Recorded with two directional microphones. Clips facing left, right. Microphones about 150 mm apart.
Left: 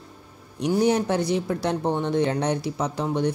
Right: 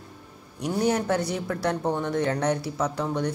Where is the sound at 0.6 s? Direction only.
20° left (ahead or behind).